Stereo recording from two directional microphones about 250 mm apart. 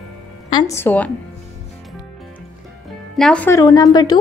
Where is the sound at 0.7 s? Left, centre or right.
Centre.